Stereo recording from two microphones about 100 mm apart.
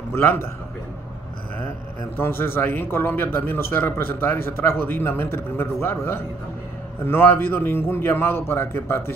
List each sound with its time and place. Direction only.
0.1 s a man's voice: 25° left (ahead or behind)
2.1 s a man's voice: 25° left (ahead or behind)
7.1 s a man's voice: 25° left (ahead or behind)